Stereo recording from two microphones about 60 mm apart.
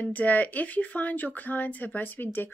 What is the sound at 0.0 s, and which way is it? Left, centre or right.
Speech, left.